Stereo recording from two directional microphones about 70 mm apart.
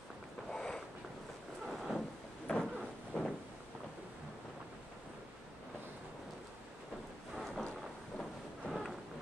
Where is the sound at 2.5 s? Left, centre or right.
Centre.